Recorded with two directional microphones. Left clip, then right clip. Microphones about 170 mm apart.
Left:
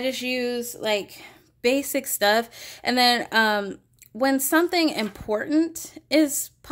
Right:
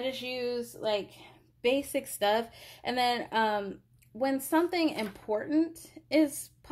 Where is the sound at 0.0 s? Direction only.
30° left (ahead or behind).